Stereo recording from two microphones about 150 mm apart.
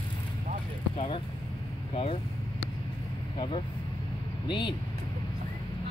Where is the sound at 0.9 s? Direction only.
35° left (ahead or behind).